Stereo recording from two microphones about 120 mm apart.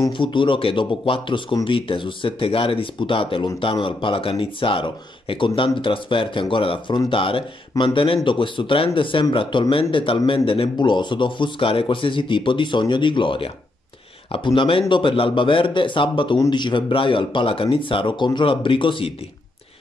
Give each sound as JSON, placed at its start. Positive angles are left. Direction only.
{"t": 0.1, "sound": "speech", "side_deg": 40}